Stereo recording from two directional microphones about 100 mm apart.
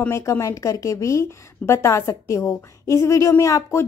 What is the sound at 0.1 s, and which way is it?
A woman's voice, 30° left (ahead or behind).